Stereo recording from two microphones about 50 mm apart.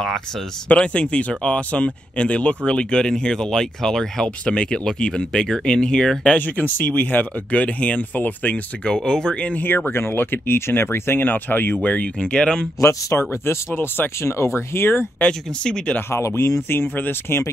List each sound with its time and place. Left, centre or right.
0.7 s speech: left
6.4 s speech: left
8.8 s speech: centre
9.4 s speech: left
11.7 s speech: left
12.3 s speech: centre
12.8 s speech: left
14.3 s speech: left
15.6 s speech: centre
16.1 s speech: left
16.3 s speech: left